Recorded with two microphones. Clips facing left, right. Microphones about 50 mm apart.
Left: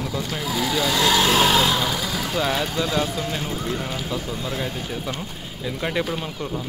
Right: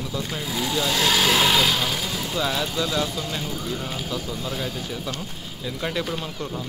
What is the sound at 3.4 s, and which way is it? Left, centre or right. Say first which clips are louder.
Speech: left 2 dB; left.